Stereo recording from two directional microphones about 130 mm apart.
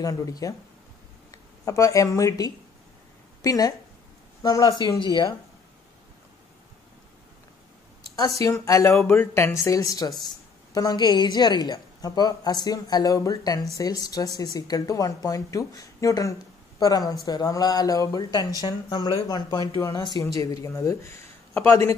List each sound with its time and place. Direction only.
0.0 s speech: 30° left (ahead or behind)
8.4 s speech: 25° left (ahead or behind)